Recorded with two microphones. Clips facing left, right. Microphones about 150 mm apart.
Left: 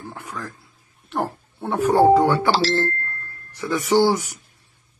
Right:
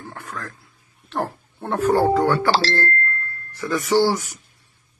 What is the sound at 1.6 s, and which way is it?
Speech, 5° left (ahead or behind).